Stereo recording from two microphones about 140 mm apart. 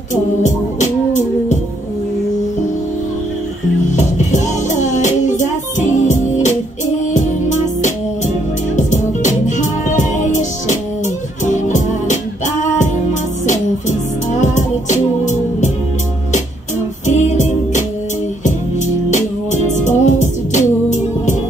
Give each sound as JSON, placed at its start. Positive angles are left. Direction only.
{"t": 0.1, "sound": "music", "side_deg": 55}
{"t": 3.9, "sound": "music", "side_deg": 60}
{"t": 17.0, "sound": "music", "side_deg": 55}
{"t": 19.0, "sound": "music", "side_deg": 60}